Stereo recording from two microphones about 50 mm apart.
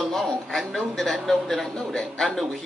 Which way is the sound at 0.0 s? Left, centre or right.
Centre.